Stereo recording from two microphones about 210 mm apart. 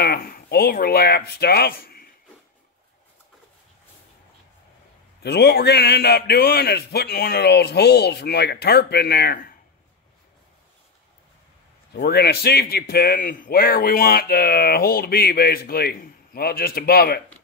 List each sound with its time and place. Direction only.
0.0 s speech: 45° left (ahead or behind)
5.2 s speech: 50° left (ahead or behind)
11.9 s speech: 50° left (ahead or behind)